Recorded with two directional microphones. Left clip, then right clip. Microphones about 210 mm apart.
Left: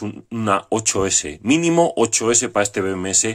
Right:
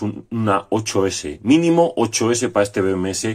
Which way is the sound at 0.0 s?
15° left (ahead or behind).